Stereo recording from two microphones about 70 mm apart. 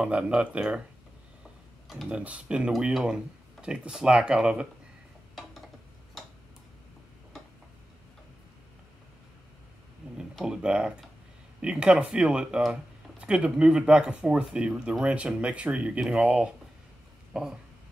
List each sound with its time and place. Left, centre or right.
0.0 s speech: centre
2.0 s speech: centre
5.3 s a sound: centre
10.4 s speech: centre